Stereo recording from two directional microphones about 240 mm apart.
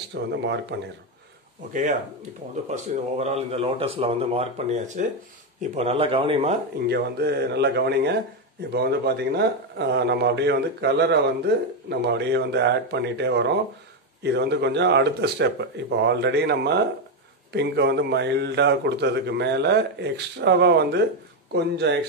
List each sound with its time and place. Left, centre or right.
0.1 s a man's voice: right
1.7 s speech: right
6.9 s a man's voice: right